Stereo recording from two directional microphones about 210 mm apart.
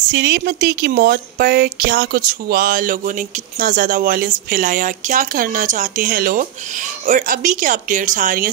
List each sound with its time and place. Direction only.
0.1 s a woman's voice: 50° right (ahead or behind)